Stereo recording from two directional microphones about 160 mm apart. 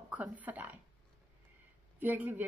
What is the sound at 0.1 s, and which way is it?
Speech, 10° right (ahead or behind).